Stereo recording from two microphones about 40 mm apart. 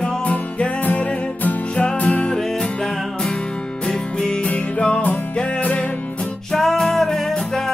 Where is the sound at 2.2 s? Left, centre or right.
Centre.